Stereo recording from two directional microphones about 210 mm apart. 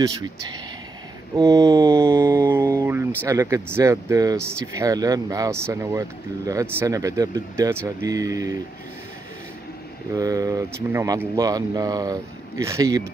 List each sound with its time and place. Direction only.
1.3 s speech: 15° right (ahead or behind)
2.1 s mantra: 15° right (ahead or behind)
3.2 s speech: 15° right (ahead or behind)
10.1 s speech: 15° right (ahead or behind)